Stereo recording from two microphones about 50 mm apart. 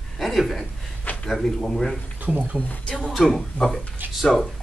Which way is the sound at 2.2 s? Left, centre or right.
Right.